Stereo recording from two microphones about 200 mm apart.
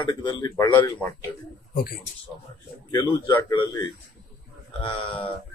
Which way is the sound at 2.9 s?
10° left (ahead or behind).